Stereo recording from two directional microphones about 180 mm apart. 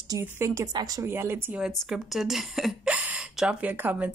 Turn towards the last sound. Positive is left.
turn(degrees=-10)  # may be behind; listen again after turning